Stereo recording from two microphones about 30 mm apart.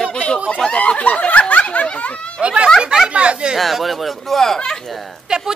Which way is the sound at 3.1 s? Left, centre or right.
Right.